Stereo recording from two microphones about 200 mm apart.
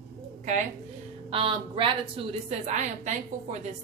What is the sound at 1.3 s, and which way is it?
A woman's voice, 25° right (ahead or behind).